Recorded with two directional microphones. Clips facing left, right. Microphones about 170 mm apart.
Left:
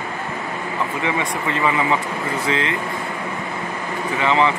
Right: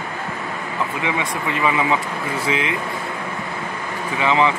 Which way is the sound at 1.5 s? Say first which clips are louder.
Even; 15° right (ahead or behind).